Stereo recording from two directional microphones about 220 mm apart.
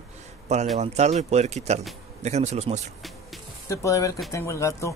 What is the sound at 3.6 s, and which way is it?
Speech, 15° left (ahead or behind).